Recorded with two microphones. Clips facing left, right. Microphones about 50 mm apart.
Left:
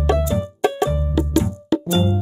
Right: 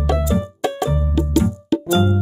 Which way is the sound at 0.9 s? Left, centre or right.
Centre.